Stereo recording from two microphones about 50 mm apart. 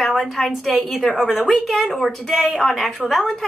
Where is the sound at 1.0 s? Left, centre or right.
Centre.